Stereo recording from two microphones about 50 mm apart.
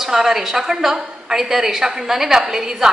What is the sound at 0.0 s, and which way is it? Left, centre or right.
A woman's voice, centre.